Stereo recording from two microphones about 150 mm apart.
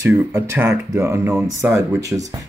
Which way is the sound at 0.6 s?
20° right (ahead or behind).